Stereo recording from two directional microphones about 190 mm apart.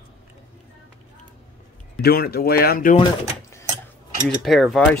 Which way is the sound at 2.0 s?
55° left (ahead or behind).